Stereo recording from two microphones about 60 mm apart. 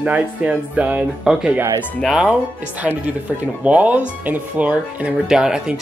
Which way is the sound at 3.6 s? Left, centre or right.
Right.